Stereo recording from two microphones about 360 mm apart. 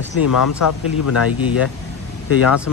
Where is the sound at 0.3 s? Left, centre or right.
Left.